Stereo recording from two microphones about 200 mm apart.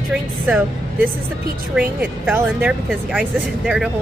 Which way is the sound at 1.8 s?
5° right (ahead or behind).